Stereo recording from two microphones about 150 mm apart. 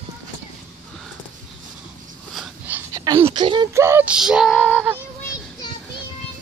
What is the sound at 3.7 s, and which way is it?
Music, 15° right (ahead or behind).